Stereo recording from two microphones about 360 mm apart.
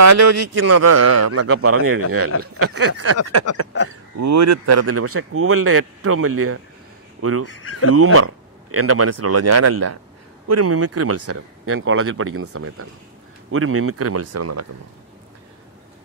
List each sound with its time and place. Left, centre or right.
0.0 s a man's voice: right
4.2 s a man's voice: right